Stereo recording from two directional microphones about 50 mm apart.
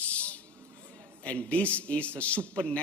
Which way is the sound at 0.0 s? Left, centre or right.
Left.